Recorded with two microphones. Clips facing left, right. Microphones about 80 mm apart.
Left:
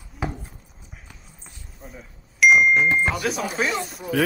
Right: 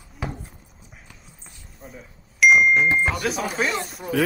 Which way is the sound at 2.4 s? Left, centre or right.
Centre.